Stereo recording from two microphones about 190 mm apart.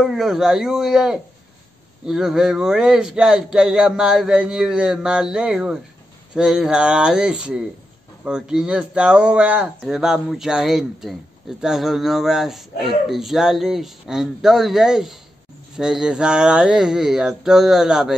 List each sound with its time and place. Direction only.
0.0 s speech: centre (ahead or behind)